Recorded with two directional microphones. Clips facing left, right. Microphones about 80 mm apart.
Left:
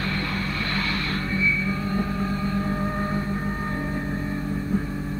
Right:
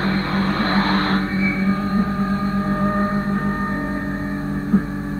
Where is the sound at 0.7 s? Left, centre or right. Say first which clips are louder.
Right 9 dB; right.